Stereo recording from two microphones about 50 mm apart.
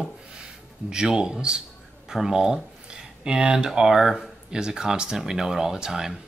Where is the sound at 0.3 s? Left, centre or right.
Centre.